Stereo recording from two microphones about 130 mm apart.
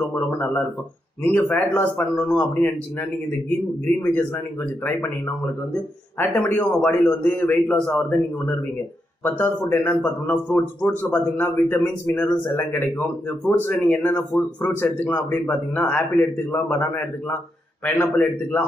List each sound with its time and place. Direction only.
0.1 s a man's voice: 15° left (ahead or behind)
5.7 s a man's voice: 15° left (ahead or behind)